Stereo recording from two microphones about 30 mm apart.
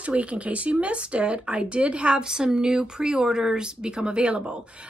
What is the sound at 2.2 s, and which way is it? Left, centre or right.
Speech, right.